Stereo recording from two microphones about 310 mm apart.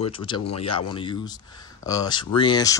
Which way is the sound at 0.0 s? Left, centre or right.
Centre.